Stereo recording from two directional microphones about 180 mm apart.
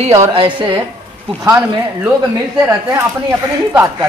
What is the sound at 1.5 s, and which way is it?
Speech, 10° right (ahead or behind).